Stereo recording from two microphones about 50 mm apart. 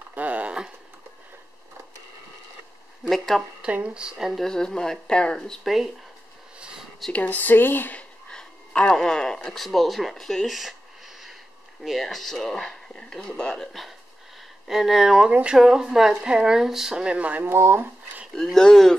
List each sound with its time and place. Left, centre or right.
0.1 s a sound: right
3.0 s speech: centre
3.6 s speech: right
4.5 s speech: centre
5.6 s speech: centre
7.1 s speech: left
8.3 s speech: centre
13.6 s speech: centre
17.2 s speech: right
17.5 s speech: right
18.3 s speech: centre